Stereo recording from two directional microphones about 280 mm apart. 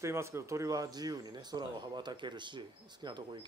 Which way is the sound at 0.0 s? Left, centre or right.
Centre.